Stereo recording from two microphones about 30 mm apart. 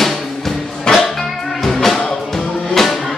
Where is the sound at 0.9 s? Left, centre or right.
Left.